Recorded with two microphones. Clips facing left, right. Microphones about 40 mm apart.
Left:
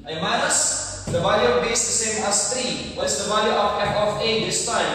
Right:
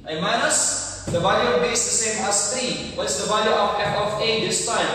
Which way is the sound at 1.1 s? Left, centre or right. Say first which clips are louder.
Even; centre.